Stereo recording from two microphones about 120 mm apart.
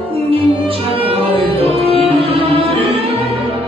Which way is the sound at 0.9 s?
50° right (ahead or behind).